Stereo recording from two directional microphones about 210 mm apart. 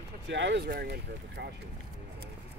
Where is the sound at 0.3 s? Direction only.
60° right (ahead or behind).